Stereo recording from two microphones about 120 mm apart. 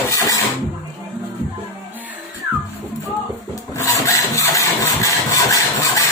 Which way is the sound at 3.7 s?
25° left (ahead or behind).